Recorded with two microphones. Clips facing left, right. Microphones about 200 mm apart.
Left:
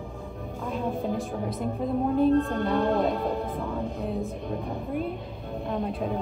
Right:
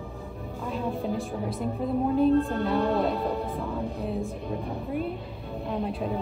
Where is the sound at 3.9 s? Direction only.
Centre (ahead or behind).